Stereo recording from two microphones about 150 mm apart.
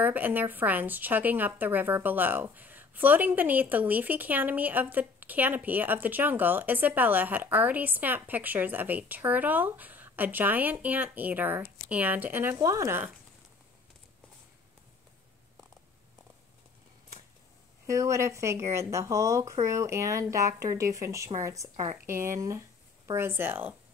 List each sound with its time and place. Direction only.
0.0 s a woman's voice: 10° right (ahead or behind)
17.8 s speech: 20° right (ahead or behind)